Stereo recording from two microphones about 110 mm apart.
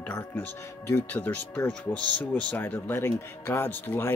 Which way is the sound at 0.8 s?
20° left (ahead or behind).